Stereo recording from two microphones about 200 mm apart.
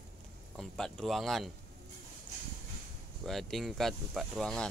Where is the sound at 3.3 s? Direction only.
Centre (ahead or behind).